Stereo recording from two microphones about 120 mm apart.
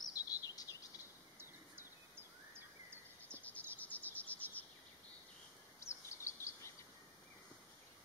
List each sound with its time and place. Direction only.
0.0 s chirp: 30° left (ahead or behind)
1.4 s a sound: 20° right (ahead or behind)
3.4 s cricket: 15° left (ahead or behind)
5.8 s bird vocalization: 25° left (ahead or behind)